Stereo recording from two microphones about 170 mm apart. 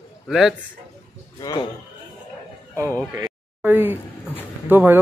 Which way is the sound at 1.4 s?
25° left (ahead or behind).